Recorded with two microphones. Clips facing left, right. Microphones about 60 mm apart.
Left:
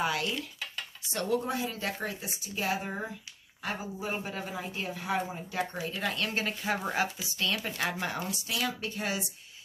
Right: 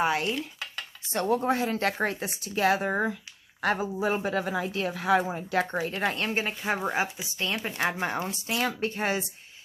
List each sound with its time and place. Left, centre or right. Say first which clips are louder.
0.0 s speech: right 4 dB; right
1.0 s dishes: right 5 dB; right
1.6 s speech: right 7 dB; right
5.8 s speech: right 5 dB; right